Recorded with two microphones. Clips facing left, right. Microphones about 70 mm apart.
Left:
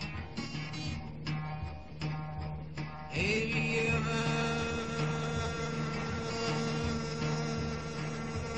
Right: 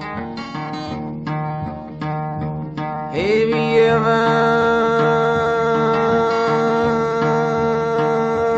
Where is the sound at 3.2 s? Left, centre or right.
Right.